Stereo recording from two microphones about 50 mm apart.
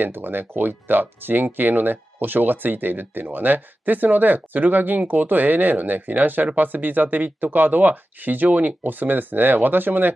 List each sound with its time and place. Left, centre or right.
0.0 s speech: right